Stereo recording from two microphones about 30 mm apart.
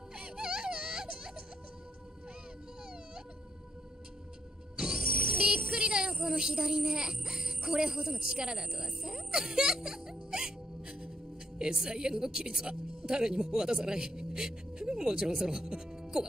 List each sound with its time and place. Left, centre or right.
0.1 s music: right
4.7 s music: right
6.6 s speech: right